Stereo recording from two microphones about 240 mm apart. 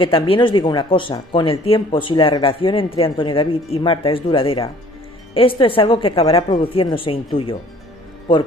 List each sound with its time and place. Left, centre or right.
0.0 s speech: left